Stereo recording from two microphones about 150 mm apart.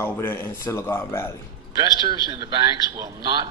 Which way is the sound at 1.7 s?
25° right (ahead or behind).